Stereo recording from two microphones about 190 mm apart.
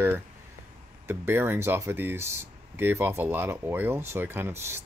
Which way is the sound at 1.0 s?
10° right (ahead or behind).